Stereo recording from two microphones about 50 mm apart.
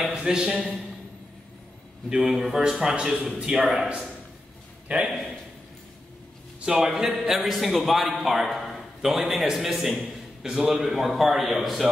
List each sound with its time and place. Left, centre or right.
0.1 s a man's voice: centre
2.0 s a man's voice: centre
3.7 s a man's voice: centre
6.6 s a man's voice: centre